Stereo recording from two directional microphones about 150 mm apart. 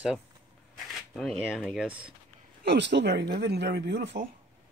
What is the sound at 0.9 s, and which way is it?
Speech, 5° left (ahead or behind).